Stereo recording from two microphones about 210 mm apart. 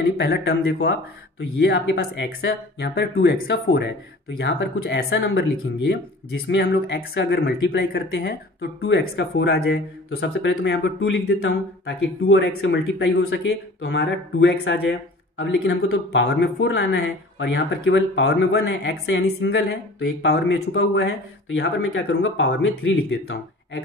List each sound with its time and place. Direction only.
0.2 s speech: 50° left (ahead or behind)